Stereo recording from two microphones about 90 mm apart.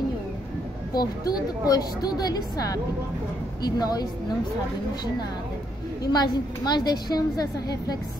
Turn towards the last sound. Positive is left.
turn(degrees=45)  # may be behind; listen again after turning